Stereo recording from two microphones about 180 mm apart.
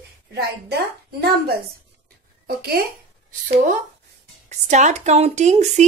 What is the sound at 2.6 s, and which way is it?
Speech, 60° right (ahead or behind).